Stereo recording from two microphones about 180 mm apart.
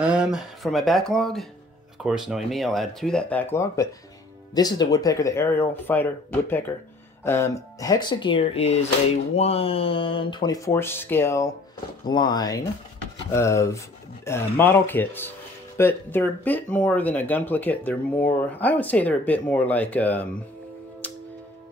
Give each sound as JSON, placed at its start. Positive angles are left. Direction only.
{"t": 0.0, "sound": "speech", "side_deg": -5}
{"t": 21.0, "sound": "music", "side_deg": 10}